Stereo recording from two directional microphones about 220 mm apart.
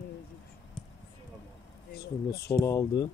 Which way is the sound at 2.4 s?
15° left (ahead or behind).